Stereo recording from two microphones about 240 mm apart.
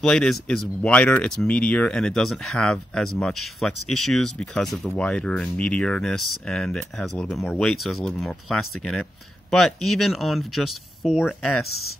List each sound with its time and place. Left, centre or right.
0.0 s speech: centre
11.5 s speech: left